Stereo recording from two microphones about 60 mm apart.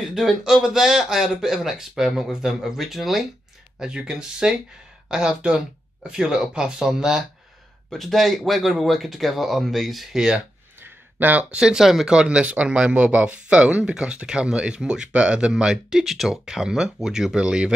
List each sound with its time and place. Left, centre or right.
0.0 s speech: centre
7.9 s speech: centre
10.8 s a sound: right
11.5 s speech: centre